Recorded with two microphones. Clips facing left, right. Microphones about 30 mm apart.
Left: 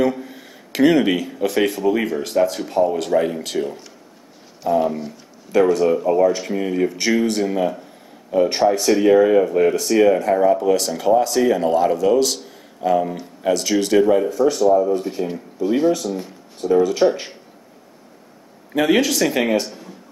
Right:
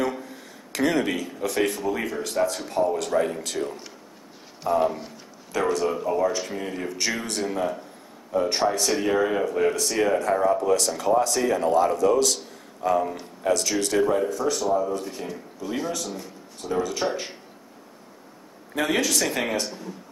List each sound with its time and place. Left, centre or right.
0.2 s speech: centre
8.5 s speech: centre
14.9 s speech: centre
18.7 s a man's voice: centre